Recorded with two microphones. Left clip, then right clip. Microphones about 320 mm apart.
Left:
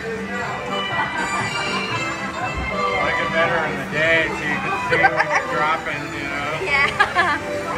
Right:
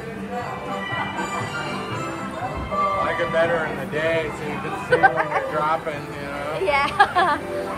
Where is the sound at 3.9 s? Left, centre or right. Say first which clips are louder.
Left 5 dB; centre.